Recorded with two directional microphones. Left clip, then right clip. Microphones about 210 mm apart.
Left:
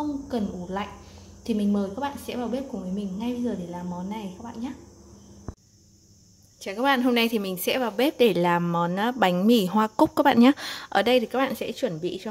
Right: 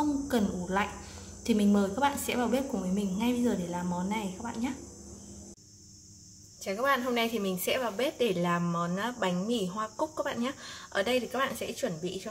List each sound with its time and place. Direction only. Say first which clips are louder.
0.3 s a woman's voice: even; centre (ahead or behind)
6.6 s a woman's voice: left 5 dB; 45° left (ahead or behind)